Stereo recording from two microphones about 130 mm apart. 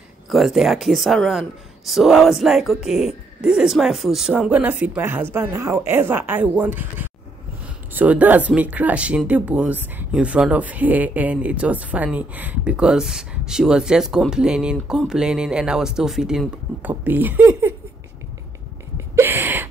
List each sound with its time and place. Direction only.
0.3 s speech: centre (ahead or behind)
4.4 s speech: 15° right (ahead or behind)
19.1 s a sound: 20° right (ahead or behind)